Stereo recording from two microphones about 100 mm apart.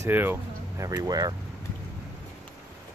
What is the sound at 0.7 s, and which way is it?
Speech, 35° right (ahead or behind).